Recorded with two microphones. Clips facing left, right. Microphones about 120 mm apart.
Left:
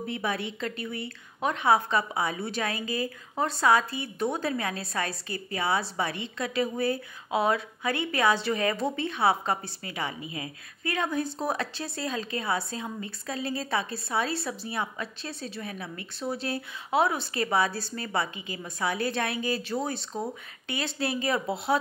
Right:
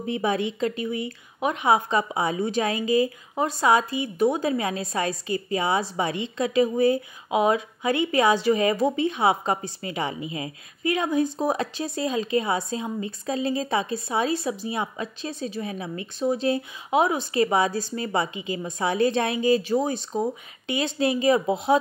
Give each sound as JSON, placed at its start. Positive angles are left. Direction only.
{"t": 0.0, "sound": "a woman's voice", "side_deg": -20}